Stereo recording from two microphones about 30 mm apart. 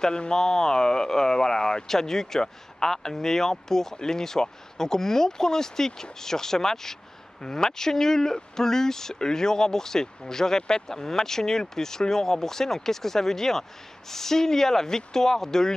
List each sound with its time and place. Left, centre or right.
0.0 s speech: left